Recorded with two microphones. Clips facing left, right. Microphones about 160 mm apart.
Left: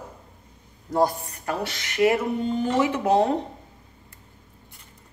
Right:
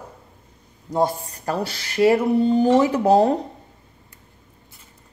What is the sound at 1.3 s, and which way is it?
Speech, 35° right (ahead or behind).